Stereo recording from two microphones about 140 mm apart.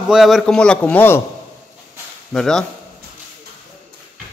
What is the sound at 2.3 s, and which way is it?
Speech, 5° left (ahead or behind).